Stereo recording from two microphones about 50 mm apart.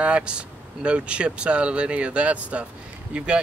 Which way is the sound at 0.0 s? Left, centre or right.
Right.